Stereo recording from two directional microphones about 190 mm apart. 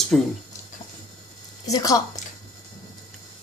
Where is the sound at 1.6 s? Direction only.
20° left (ahead or behind).